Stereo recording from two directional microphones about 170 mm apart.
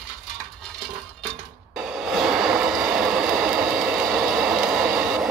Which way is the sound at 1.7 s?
5° right (ahead or behind).